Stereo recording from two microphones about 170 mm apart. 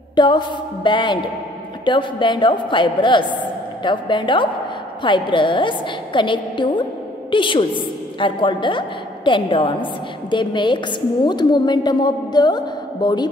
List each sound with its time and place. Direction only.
0.1 s a woman's voice: 25° left (ahead or behind)